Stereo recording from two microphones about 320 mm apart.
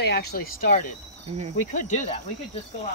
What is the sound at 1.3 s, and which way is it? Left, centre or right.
Cricket, centre.